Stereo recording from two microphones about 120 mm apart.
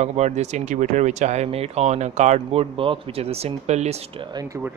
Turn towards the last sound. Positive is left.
turn(degrees=-65)  # may be behind; listen again after turning